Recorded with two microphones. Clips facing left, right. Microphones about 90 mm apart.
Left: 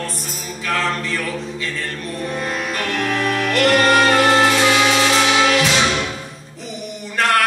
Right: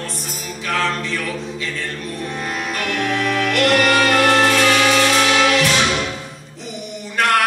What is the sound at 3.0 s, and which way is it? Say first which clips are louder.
Music: right 1 dB; 15° left (ahead or behind).